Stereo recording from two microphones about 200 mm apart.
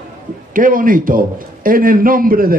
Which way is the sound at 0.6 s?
45° right (ahead or behind).